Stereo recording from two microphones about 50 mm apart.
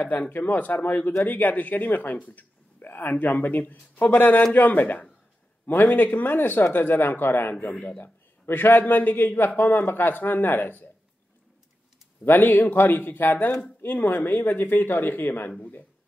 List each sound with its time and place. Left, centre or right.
0.0 s speech: left
12.3 s speech: left